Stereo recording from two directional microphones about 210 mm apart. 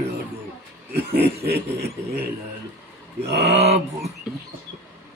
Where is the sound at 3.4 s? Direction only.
30° right (ahead or behind).